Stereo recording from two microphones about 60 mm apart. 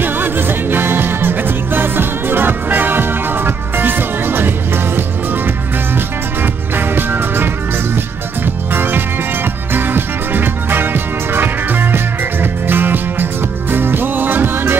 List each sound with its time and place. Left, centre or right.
0.0 s music: right